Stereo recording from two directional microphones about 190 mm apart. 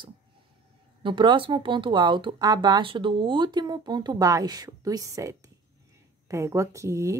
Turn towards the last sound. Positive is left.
turn(degrees=-15)  # may be behind; listen again after turning